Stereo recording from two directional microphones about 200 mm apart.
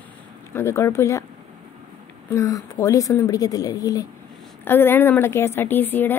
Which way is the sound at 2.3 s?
15° left (ahead or behind).